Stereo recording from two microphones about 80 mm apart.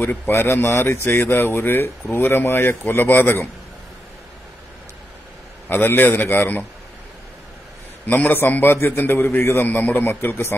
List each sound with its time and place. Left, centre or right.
0.0 s speech: left
5.7 s speech: left
8.1 s speech: left